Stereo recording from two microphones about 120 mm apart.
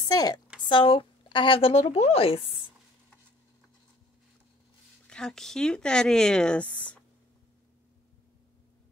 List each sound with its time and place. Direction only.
0.1 s speech: 35° left (ahead or behind)
0.7 s speech: 45° left (ahead or behind)
5.0 s speech: 5° left (ahead or behind)